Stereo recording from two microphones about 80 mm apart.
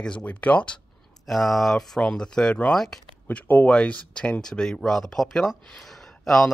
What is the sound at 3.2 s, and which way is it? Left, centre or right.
Speech, left.